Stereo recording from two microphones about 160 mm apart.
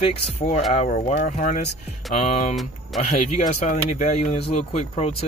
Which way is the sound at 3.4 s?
50° left (ahead or behind).